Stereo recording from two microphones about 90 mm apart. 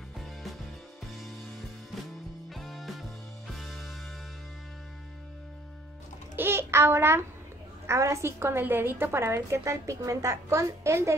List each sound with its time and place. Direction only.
0.2 s music: centre (ahead or behind)
2.5 s music: centre (ahead or behind)
6.3 s a sound: 25° right (ahead or behind)
7.8 s a woman's voice: 35° right (ahead or behind)